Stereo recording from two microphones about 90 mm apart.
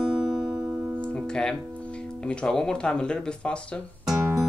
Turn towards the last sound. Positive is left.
turn(degrees=-25)  # may be behind; listen again after turning